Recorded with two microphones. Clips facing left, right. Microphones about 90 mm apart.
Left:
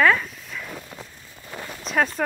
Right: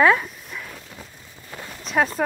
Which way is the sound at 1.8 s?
Centre (ahead or behind).